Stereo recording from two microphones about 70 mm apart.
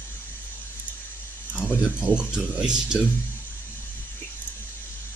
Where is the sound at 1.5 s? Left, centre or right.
Centre.